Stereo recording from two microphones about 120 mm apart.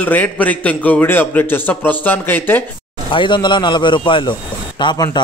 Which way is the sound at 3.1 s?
40° left (ahead or behind).